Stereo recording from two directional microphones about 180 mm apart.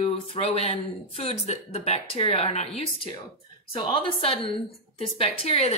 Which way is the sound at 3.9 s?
30° left (ahead or behind).